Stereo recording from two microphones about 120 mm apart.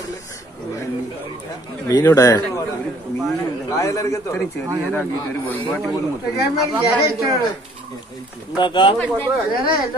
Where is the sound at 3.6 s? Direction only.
25° left (ahead or behind).